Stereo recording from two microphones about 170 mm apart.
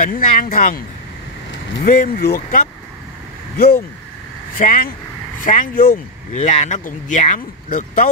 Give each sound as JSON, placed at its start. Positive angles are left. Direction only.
{"t": 0.0, "sound": "speech", "side_deg": 55}
{"t": 1.9, "sound": "speech", "side_deg": 60}